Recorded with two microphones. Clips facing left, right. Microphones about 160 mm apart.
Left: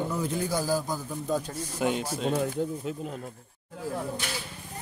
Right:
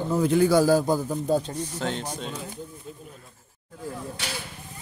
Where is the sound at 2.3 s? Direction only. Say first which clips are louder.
Left 9 dB; 60° left (ahead or behind).